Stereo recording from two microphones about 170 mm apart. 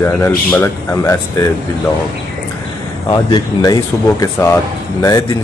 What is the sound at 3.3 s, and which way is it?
Speech, 20° left (ahead or behind).